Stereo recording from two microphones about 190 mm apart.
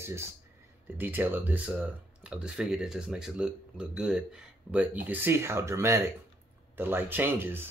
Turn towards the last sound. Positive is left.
turn(degrees=-10)  # may be behind; listen again after turning